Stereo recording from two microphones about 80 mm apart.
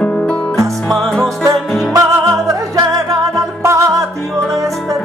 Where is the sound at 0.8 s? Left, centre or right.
Centre.